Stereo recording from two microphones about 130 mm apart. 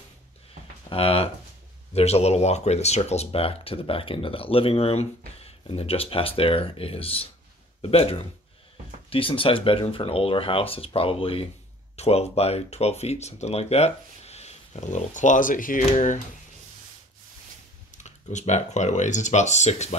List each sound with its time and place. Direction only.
0.8 s speech: 45° left (ahead or behind); by 15.8 s 90° left
15.8 s speech: 65° left (ahead or behind)
17.9 s speech: 65° left (ahead or behind)